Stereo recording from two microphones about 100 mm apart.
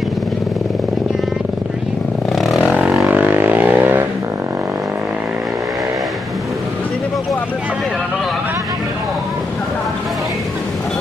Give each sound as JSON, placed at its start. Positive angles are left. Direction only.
{"t": 2.3, "sound": "vehicle", "side_deg": 0}
{"t": 3.1, "sound": "vehicle", "side_deg": -20}